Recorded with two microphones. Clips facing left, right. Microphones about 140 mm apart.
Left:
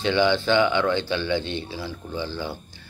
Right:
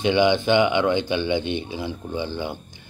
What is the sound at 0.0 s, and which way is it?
Speech, 15° right (ahead or behind).